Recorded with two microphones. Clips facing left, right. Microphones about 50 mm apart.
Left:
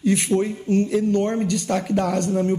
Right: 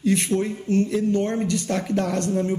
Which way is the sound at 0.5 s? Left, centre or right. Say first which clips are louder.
Left 2 dB; centre.